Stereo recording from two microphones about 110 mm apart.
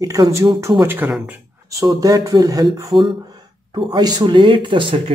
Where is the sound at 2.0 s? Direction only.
35° right (ahead or behind).